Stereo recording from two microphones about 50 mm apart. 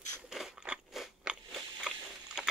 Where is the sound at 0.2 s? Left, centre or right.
Centre.